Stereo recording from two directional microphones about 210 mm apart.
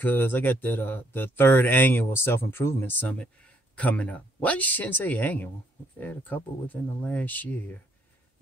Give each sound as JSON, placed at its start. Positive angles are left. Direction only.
{"t": 0.0, "sound": "speech", "side_deg": 10}